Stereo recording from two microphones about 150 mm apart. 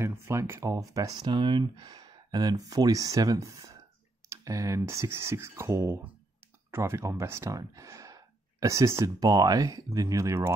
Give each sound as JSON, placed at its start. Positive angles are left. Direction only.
{"t": 0.0, "sound": "speech", "side_deg": -20}